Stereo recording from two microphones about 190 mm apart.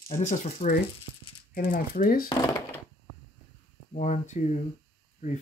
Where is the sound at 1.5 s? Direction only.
50° left (ahead or behind).